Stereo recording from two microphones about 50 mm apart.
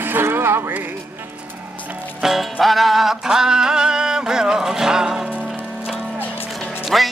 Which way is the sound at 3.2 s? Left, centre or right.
Centre.